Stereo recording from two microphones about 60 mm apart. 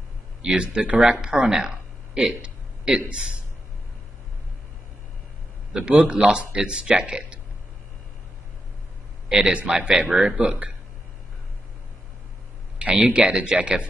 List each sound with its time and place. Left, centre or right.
0.4 s speech: centre
2.1 s a sound: centre
5.7 s speech: centre
9.3 s speech: centre
12.7 s speech: centre